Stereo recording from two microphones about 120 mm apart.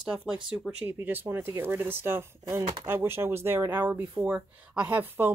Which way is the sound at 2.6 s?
45° right (ahead or behind).